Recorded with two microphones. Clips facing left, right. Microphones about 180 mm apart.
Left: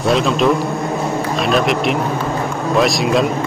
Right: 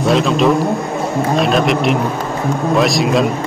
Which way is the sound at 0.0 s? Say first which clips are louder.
Right 2 dB; centre (ahead or behind).